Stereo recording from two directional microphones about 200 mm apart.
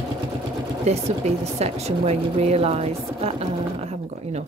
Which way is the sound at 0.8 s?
30° right (ahead or behind).